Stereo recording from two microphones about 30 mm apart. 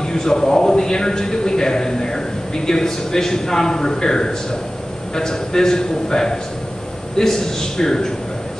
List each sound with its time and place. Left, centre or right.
0.0 s a man's voice: left